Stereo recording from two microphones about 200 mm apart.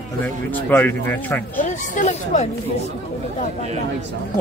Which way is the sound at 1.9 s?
35° left (ahead or behind).